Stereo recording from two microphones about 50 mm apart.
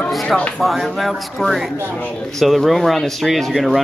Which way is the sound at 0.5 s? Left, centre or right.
Centre.